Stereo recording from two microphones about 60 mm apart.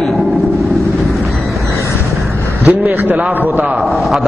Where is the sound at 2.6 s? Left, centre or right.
Right.